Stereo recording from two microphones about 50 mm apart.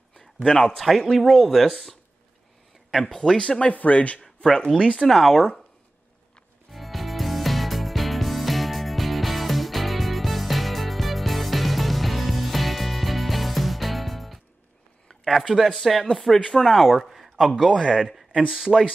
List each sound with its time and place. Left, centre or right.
0.7 s speech: centre
3.3 s speech: centre
3.7 s speech: left
4.2 s speech: centre
6.7 s music: centre
15.0 s speech: centre
16.9 s speech: centre
17.8 s speech: centre